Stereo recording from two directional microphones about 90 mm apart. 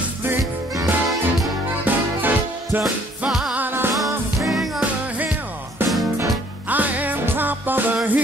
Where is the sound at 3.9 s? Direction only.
Centre (ahead or behind).